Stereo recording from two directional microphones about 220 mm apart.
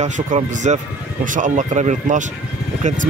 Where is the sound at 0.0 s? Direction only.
35° right (ahead or behind).